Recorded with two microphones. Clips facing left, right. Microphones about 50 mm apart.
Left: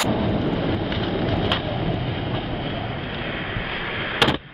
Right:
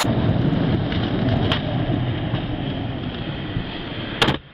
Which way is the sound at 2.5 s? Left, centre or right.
Left.